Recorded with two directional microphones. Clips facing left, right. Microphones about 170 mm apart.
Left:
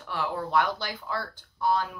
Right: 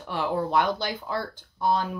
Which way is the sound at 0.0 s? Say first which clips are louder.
Right 4 dB; 20° right (ahead or behind).